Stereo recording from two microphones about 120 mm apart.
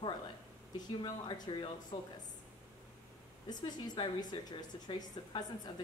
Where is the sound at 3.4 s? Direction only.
35° left (ahead or behind).